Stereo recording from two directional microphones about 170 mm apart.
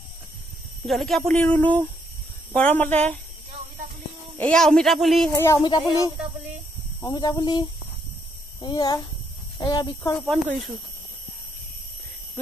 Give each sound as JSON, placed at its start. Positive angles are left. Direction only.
{"t": 0.8, "sound": "speech", "side_deg": 0}
{"t": 4.4, "sound": "speech", "side_deg": 5}
{"t": 5.3, "sound": "speech", "side_deg": 20}
{"t": 7.0, "sound": "speech", "side_deg": 25}
{"t": 10.1, "sound": "speech", "side_deg": 0}